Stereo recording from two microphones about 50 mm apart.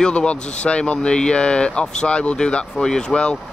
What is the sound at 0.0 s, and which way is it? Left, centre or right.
Speech, centre.